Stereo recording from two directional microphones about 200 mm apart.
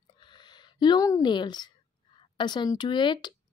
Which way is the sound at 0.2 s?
20° left (ahead or behind).